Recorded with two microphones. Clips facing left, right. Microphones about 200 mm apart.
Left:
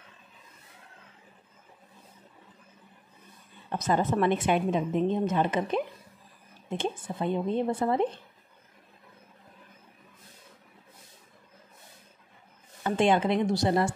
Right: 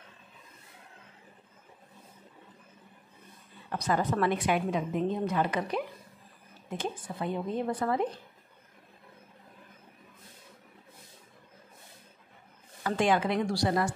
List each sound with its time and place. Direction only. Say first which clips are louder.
3.7 s a woman's voice: left 3 dB; 25° left (ahead or behind)
12.8 s a woman's voice: left 3 dB; 25° left (ahead or behind)